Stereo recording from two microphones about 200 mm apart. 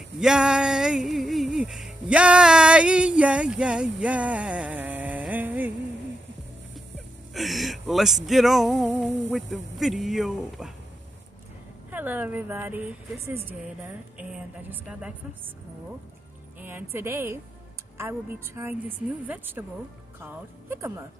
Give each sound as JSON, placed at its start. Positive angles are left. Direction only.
{"t": 0.2, "sound": "music", "side_deg": -5}
{"t": 7.3, "sound": "speech", "side_deg": 0}
{"t": 11.9, "sound": "a woman's voice", "side_deg": -10}
{"t": 14.7, "sound": "speech", "side_deg": -5}
{"t": 16.5, "sound": "music", "side_deg": -10}
{"t": 16.9, "sound": "a woman's voice", "side_deg": -10}